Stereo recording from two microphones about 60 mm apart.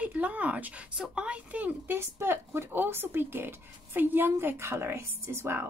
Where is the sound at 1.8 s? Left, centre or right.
Right.